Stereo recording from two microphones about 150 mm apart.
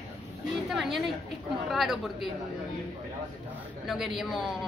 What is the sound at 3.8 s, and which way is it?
Speech, centre (ahead or behind).